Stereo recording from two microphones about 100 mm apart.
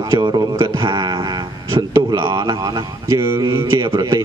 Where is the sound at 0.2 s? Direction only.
50° right (ahead or behind).